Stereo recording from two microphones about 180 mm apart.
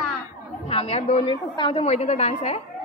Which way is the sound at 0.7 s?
35° left (ahead or behind).